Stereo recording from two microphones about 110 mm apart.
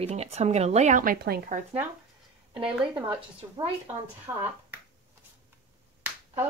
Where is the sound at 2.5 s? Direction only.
50° right (ahead or behind).